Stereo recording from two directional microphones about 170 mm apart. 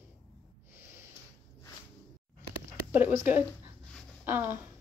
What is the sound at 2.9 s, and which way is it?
Speech, 10° right (ahead or behind).